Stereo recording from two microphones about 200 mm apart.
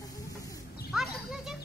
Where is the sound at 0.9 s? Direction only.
Centre (ahead or behind).